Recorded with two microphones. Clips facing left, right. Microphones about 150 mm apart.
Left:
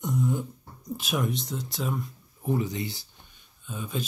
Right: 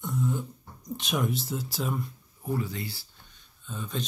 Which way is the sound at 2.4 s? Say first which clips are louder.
Left 3 dB; 20° left (ahead or behind).